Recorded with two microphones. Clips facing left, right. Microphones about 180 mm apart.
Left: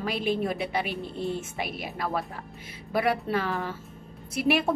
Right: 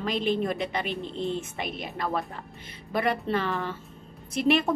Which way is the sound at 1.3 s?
5° left (ahead or behind).